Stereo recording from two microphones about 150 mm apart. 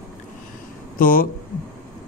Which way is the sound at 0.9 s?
70° left (ahead or behind).